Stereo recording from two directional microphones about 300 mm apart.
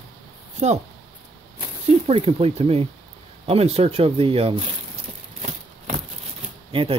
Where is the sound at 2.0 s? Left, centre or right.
Centre.